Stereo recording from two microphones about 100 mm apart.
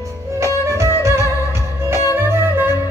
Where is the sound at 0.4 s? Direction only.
30° right (ahead or behind).